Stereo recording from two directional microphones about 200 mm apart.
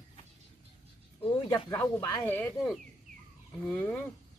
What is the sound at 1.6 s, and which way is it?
Speech, 15° left (ahead or behind).